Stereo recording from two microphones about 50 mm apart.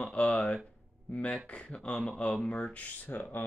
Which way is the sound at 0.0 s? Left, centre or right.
Left.